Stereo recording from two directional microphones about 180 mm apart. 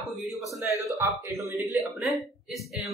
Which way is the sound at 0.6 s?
15° right (ahead or behind).